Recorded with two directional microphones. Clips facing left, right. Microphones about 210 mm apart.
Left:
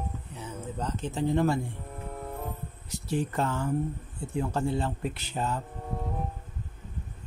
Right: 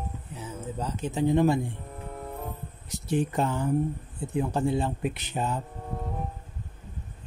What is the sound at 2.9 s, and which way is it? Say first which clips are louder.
Speech: right 3 dB; 20° right (ahead or behind).